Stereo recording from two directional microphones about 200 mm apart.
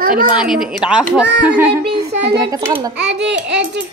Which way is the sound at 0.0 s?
45° right (ahead or behind).